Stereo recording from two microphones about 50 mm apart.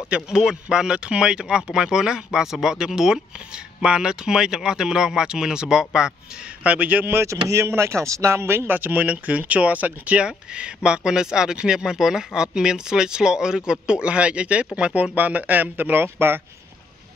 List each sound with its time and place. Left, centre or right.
0.4 s speech: centre
6.6 s a man's voice: right
7.2 s speech: right
7.6 s speech: right
8.6 s speech: right